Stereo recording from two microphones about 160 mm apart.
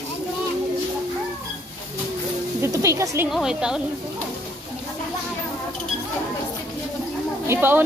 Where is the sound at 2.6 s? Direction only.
20° right (ahead or behind).